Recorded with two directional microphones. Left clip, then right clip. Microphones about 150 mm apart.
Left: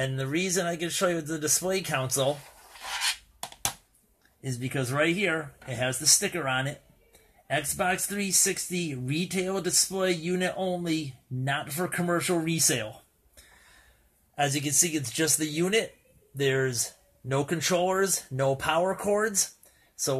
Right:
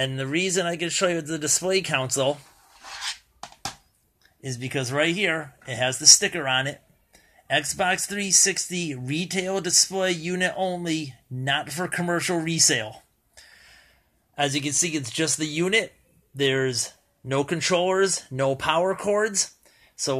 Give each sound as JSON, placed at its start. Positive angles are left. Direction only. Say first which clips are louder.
{"t": 0.0, "sound": "speech", "louder": "right 4 dB", "side_deg": -25}
{"t": 4.5, "sound": "speech", "louder": "right 3 dB", "side_deg": -25}
{"t": 14.3, "sound": "speech", "louder": "right 2 dB", "side_deg": -30}